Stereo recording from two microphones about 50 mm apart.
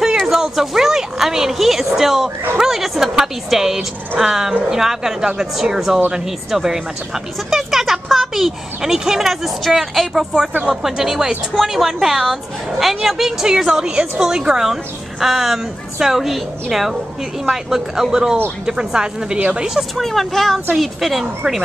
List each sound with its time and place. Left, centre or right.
0.3 s a woman's voice: centre
20.0 s speech: centre